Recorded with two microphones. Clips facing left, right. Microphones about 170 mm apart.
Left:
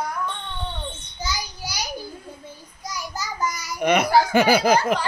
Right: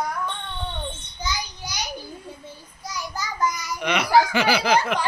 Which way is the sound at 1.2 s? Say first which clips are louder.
Even; 10° left (ahead or behind).